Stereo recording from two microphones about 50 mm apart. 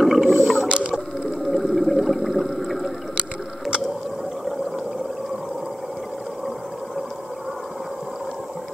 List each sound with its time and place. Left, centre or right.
0.0 s toilet flush: centre
0.7 s water: right
1.4 s a sound: centre